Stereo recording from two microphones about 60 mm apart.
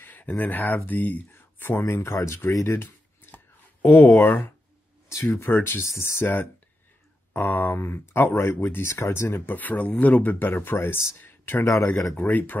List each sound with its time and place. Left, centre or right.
0.0 s speech: left
5.1 s speech: left
5.4 s speech: left
7.3 s speech: left
9.5 s speech: left
11.6 s speech: left
12.2 s speech: left